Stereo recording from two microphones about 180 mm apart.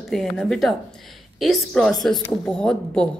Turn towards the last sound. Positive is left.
turn(degrees=5)  # may be behind; listen again after turning